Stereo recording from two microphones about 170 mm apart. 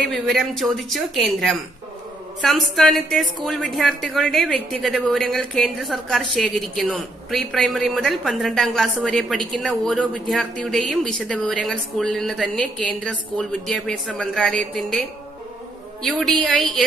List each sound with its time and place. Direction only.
0.0 s a woman's voice: centre (ahead or behind)